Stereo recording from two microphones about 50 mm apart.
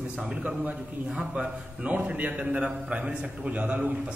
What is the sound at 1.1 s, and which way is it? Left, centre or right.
A man's voice, centre.